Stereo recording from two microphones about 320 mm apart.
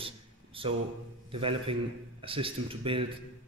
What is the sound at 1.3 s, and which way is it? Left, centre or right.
Speech, centre.